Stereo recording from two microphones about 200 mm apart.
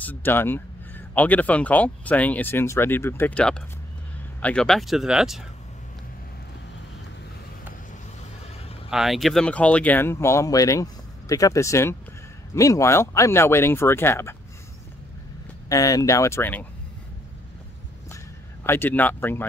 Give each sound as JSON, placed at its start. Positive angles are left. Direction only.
{"t": 0.0, "sound": "speech", "side_deg": 10}
{"t": 8.9, "sound": "speech", "side_deg": 0}
{"t": 15.7, "sound": "speech", "side_deg": 15}
{"t": 18.1, "sound": "a sound", "side_deg": 10}